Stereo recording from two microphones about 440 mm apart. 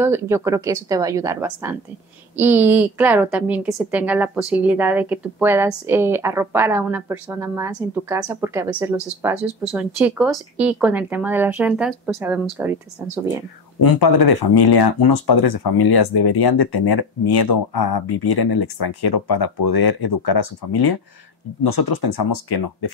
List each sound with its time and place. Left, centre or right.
0.0 s a woman's voice: centre
13.7 s speech: left